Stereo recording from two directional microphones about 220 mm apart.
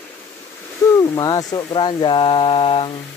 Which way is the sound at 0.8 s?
15° left (ahead or behind).